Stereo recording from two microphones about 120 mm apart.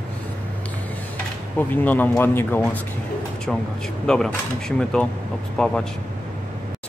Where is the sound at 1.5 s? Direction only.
15° left (ahead or behind).